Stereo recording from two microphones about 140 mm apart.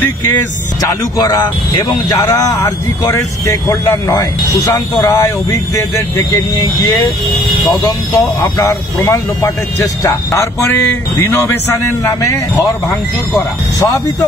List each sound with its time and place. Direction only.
1.1 s a man's voice: 25° left (ahead or behind)
8.4 s a man's voice: 25° left (ahead or behind)